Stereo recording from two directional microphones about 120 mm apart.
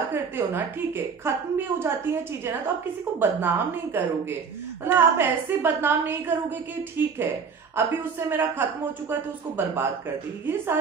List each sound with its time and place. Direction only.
0.1 s a woman's voice: 15° right (ahead or behind)
7.7 s a woman's voice: 20° right (ahead or behind)